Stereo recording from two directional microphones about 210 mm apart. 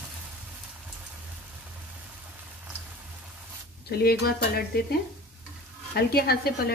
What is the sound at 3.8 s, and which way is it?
A woman's voice, 50° left (ahead or behind).